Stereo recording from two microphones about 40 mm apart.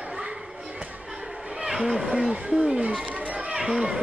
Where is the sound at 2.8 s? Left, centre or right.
Right.